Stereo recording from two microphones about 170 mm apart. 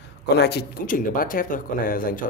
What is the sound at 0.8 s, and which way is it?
Speech, 55° left (ahead or behind).